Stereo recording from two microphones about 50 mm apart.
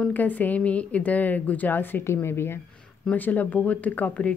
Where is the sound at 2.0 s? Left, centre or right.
Left.